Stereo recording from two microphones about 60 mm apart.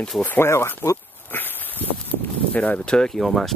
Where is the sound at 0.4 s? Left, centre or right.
Left.